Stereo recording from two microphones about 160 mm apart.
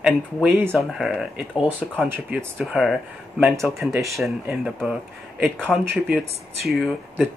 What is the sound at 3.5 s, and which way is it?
Speech, 20° right (ahead or behind).